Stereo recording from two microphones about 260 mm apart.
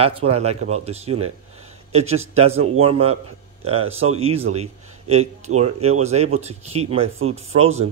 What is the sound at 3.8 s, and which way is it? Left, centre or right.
Speech, right.